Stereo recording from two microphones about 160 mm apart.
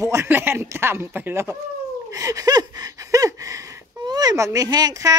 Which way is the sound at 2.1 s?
20° right (ahead or behind).